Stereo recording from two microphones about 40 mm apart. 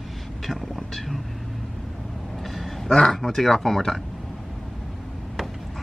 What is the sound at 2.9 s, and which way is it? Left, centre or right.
Speech, centre.